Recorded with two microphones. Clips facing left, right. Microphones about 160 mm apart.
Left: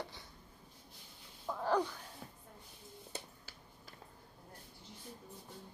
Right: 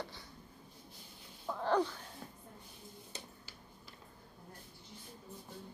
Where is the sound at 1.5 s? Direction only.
5° left (ahead or behind).